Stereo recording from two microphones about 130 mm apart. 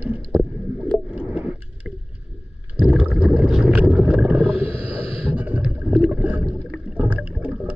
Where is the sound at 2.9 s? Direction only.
10° right (ahead or behind).